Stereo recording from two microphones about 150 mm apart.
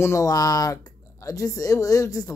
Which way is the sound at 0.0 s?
20° left (ahead or behind).